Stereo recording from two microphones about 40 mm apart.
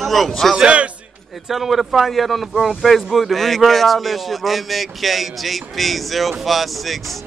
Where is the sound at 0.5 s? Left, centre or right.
Right.